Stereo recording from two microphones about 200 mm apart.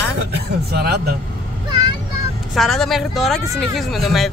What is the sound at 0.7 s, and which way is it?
Speech, 50° right (ahead or behind).